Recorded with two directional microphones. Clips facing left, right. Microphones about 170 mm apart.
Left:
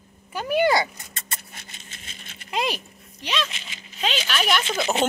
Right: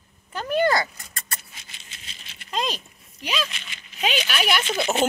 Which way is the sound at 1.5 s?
50° left (ahead or behind).